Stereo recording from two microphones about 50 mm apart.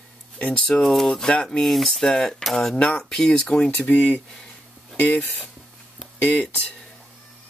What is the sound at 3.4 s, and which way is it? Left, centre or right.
Speech, left.